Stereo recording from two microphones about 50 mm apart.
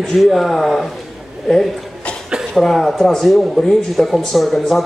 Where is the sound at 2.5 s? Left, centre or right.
Centre.